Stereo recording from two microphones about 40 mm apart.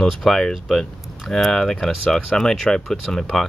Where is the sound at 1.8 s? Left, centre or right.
Centre.